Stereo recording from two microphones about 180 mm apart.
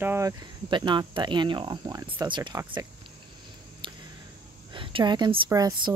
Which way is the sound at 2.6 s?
15° right (ahead or behind).